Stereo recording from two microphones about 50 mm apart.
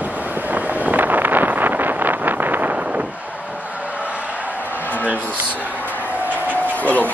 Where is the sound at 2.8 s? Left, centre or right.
Right.